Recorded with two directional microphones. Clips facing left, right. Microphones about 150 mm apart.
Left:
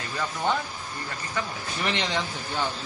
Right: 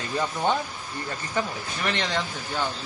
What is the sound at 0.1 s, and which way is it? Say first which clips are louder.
Speech: right 2 dB; 20° right (ahead or behind).